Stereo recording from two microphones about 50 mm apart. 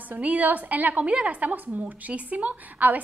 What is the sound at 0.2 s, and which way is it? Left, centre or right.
A woman's voice, right.